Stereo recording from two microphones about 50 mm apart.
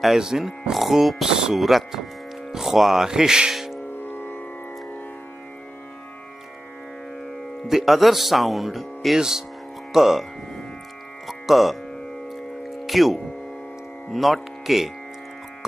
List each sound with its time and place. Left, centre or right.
0.0 s speech: centre
1.5 s speech: centre
3.5 s music: centre
4.1 s music: left
7.6 s speech: centre
11.2 s speech: centre
12.8 s speech: centre